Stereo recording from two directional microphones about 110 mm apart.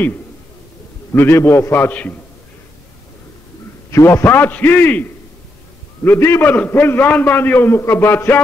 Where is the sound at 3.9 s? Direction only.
25° left (ahead or behind).